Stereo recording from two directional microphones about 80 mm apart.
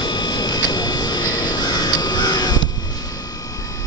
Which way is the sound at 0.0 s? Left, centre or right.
Left.